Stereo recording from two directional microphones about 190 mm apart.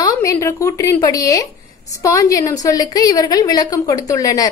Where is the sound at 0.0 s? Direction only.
20° left (ahead or behind).